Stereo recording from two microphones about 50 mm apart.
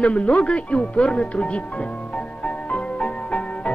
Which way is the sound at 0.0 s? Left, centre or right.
Left.